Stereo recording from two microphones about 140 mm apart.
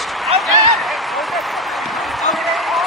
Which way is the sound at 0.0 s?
Centre (ahead or behind).